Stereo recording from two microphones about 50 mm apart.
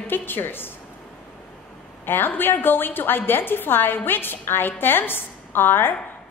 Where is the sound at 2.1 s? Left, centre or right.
Left.